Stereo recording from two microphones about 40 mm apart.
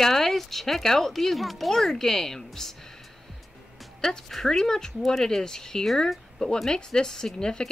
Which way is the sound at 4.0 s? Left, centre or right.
Centre.